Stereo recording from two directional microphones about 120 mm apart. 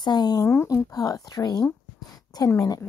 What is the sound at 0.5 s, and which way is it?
A woman's voice, 20° left (ahead or behind).